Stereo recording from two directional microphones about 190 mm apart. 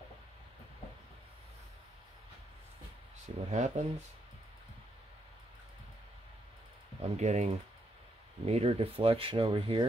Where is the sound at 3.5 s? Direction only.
40° right (ahead or behind).